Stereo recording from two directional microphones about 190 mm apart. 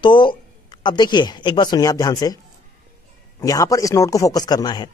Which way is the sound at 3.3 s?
20° left (ahead or behind).